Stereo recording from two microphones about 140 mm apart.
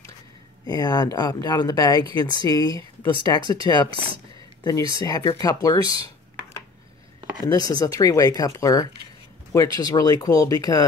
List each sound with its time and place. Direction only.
0.7 s speech: 25° left (ahead or behind)
7.4 s speech: 25° left (ahead or behind)